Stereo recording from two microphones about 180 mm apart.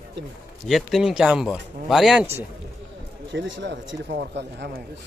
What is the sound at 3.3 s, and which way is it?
Speech, 80° right.